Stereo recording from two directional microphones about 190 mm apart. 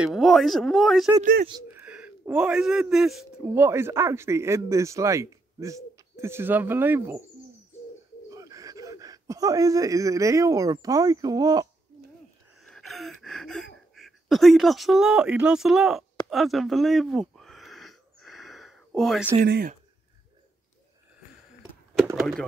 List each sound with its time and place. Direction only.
0.0 s speech: centre (ahead or behind)
1.2 s speech: 50° right (ahead or behind)
1.5 s speech: 15° right (ahead or behind)
3.4 s speech: 15° right (ahead or behind)
8.3 s speech: 20° right (ahead or behind)
12.5 s gasp: centre (ahead or behind)
13.9 s speech: centre (ahead or behind)
16.3 s a sound: centre (ahead or behind)
19.4 s speech: 55° right (ahead or behind)
22.1 s speech: centre (ahead or behind)